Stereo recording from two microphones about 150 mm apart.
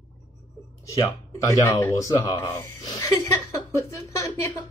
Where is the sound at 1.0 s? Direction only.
20° left (ahead or behind).